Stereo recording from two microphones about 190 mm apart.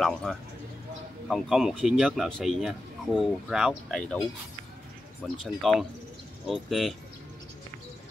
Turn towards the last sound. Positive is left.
turn(degrees=0)  # may be behind; listen again after turning